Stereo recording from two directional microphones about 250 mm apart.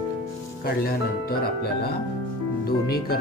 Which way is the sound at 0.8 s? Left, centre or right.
Left.